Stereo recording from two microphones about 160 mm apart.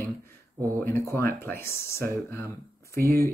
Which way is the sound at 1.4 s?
15° left (ahead or behind).